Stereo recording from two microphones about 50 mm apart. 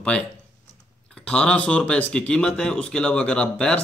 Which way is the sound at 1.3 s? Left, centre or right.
Left.